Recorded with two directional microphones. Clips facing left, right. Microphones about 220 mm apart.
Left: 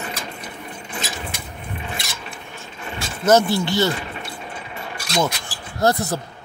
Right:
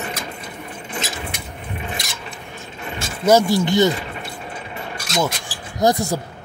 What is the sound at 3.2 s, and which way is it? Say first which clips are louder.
Speech: right 1 dB; 15° right (ahead or behind).